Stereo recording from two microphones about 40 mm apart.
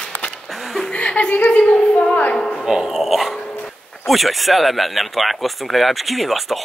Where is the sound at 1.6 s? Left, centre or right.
Left.